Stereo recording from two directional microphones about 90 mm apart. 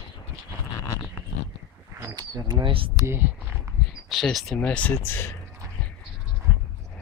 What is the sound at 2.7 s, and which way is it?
Speech, 80° right.